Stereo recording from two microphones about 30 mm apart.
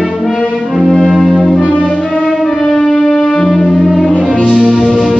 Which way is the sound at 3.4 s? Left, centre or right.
Centre.